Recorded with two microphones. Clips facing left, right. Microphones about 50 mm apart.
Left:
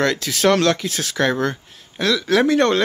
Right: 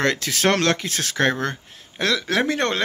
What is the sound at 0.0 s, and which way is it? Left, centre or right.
Speech, right.